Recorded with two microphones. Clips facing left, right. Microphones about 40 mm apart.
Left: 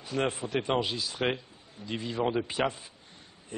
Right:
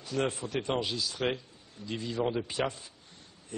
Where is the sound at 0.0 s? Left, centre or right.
Centre.